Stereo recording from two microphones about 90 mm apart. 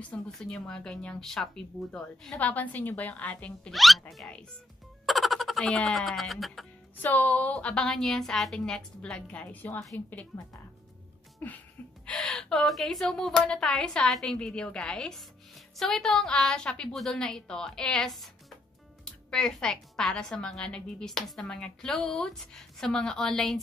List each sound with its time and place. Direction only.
0.4 s a woman's voice: 5° left (ahead or behind)
3.7 s a sound: centre (ahead or behind)
5.0 s music: centre (ahead or behind)
5.8 s a sound: 5° left (ahead or behind)
7.0 s a woman's voice: 20° left (ahead or behind)
11.4 s a woman's voice: 20° left (ahead or behind)